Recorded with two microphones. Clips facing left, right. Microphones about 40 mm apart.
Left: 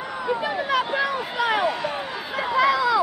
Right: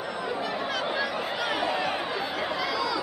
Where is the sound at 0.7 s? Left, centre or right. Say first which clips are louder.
Left 8 dB; centre.